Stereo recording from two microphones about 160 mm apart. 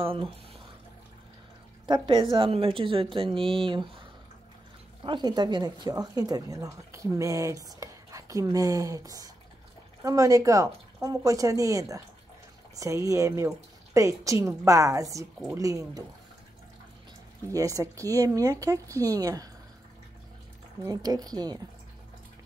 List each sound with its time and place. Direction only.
0.0 s speech: 35° right (ahead or behind)
1.9 s a woman's voice: 30° right (ahead or behind)
17.5 s speech: 20° right (ahead or behind)
20.8 s speech: 25° right (ahead or behind)